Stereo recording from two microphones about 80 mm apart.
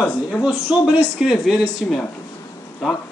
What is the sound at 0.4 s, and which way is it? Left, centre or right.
A man's voice, centre.